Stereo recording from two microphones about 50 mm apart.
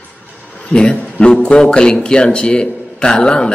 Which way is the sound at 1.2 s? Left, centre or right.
Centre.